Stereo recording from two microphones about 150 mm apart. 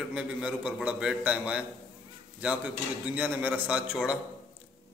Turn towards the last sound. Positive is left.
turn(degrees=-5)  # may be behind; listen again after turning